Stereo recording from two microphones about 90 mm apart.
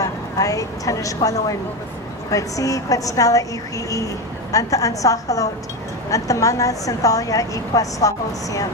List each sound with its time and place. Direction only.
0.0 s a woman's voice: 40° left (ahead or behind)